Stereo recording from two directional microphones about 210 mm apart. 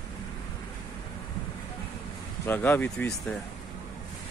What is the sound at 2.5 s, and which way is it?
Speech, 10° left (ahead or behind).